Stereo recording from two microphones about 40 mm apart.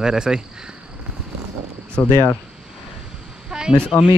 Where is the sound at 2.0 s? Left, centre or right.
Left.